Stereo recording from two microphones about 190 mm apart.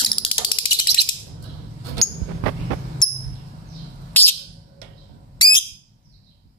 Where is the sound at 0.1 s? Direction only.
25° left (ahead or behind).